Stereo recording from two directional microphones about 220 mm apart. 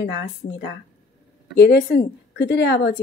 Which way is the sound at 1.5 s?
45° left (ahead or behind).